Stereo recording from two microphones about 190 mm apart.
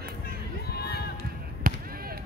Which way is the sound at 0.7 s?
55° left (ahead or behind).